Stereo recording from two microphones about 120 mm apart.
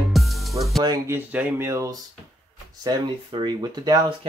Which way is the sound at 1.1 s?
15° right (ahead or behind).